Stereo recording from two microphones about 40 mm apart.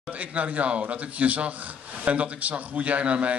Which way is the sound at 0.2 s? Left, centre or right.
Right.